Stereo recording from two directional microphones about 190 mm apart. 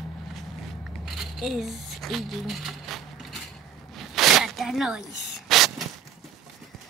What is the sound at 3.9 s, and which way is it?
Zipper, centre (ahead or behind).